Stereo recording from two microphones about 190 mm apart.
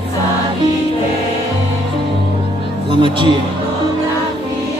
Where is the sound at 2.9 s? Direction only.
25° right (ahead or behind).